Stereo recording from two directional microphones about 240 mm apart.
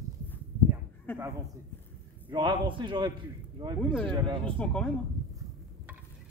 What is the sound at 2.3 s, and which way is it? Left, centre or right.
Speech, centre.